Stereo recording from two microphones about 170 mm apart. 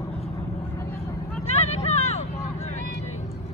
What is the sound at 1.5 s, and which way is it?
Vehicle, 40° left (ahead or behind).